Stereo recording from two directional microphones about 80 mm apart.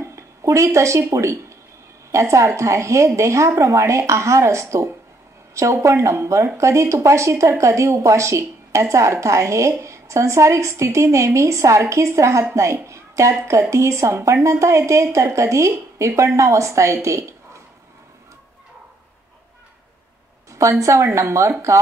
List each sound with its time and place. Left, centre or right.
0.0 s speech: right
20.8 s speech: right